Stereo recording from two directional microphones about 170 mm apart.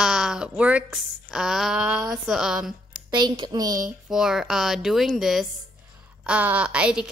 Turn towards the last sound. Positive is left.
turn(degrees=-5)  # may be behind; listen again after turning